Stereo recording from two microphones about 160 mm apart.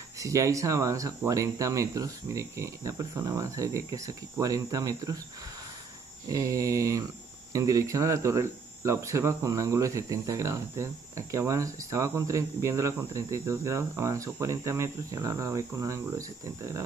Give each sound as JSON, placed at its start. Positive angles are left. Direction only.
{"t": 0.2, "sound": "cricket", "side_deg": -20}
{"t": 6.2, "sound": "cricket", "side_deg": -20}